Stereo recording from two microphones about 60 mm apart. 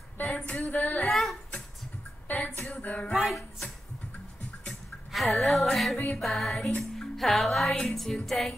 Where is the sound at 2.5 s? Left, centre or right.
Left.